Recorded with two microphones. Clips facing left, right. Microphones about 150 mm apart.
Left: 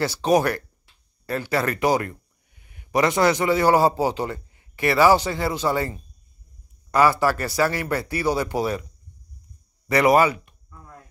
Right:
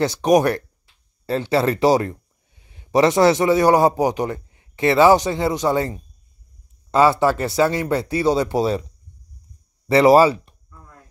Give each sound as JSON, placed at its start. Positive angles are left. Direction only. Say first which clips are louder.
{"t": 0.0, "sound": "speech", "louder": "right 4 dB", "side_deg": -20}
{"t": 9.8, "sound": "speech", "louder": "right 5 dB", "side_deg": -25}